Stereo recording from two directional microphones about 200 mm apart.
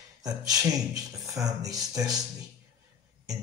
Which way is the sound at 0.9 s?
15° right (ahead or behind).